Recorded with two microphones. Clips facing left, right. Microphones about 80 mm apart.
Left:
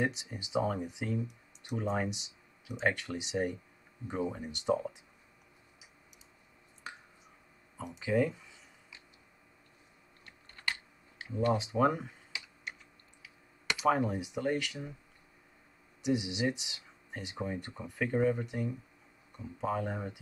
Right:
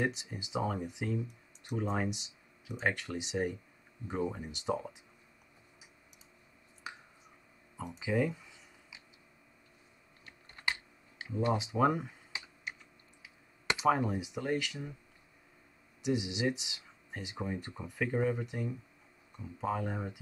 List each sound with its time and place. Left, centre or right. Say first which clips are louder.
0.0 s speech: left 1 dB; centre
6.8 s a sound: even; centre
8.0 s speech: left 2 dB; centre
10.7 s computer keyboard: right 1 dB; centre
11.5 s speech: right 1 dB; centre
12.3 s typing: even; right
13.2 s clicking: left 1 dB; right
13.8 s speech: left 1 dB; centre
16.0 s speech: left 1 dB; centre